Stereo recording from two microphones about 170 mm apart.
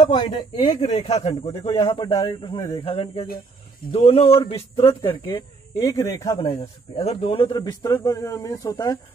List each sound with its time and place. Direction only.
0.0 s a man's voice: 30° left (ahead or behind)
5.8 s speech: 20° left (ahead or behind)
7.0 s speech: 35° left (ahead or behind)